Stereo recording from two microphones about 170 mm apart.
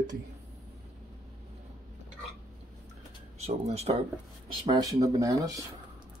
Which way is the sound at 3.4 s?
40° right (ahead or behind).